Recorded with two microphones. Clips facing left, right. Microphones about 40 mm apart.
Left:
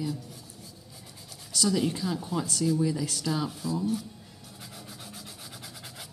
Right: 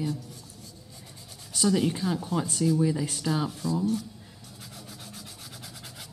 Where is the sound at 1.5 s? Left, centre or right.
Right.